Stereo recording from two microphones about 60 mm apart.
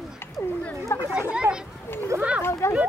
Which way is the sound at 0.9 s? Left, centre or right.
Left.